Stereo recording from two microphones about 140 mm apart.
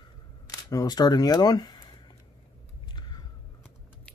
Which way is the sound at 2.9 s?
30° left (ahead or behind).